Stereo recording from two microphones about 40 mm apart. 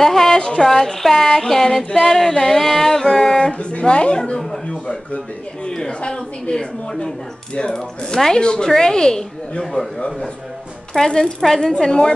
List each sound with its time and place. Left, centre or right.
0.0 s speech: centre
0.4 s a woman's voice: left
0.7 s female singing: centre
3.5 s a woman's voice: left
5.7 s female singing: centre
5.9 s a woman's voice: left
8.6 s female singing: centre
9.9 s a woman's voice: left
11.8 s female singing: centre